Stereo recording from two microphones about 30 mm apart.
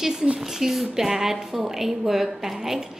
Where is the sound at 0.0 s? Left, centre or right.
Centre.